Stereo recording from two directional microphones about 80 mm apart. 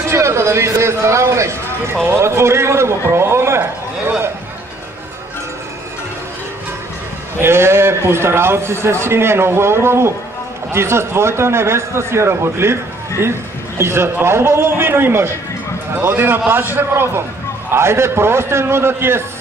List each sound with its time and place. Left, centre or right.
0.1 s a man's voice: right
7.3 s a man's voice: right
13.7 s a man's voice: right